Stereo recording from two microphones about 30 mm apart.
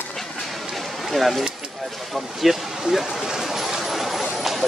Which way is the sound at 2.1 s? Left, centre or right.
Centre.